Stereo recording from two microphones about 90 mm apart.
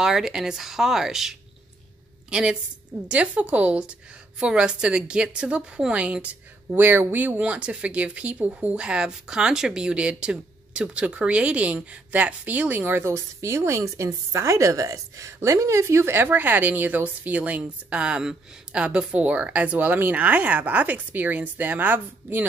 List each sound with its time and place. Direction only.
0.0 s a woman's voice: 5° right (ahead or behind)